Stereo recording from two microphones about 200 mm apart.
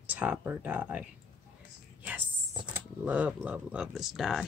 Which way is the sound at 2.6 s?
5° right (ahead or behind).